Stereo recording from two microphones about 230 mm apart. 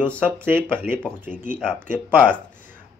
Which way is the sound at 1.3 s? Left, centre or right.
Left.